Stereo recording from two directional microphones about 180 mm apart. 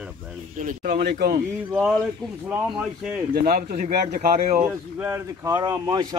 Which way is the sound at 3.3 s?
55° right (ahead or behind).